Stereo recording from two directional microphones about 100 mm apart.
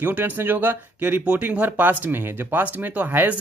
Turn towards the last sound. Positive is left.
turn(degrees=-15)  # may be behind; listen again after turning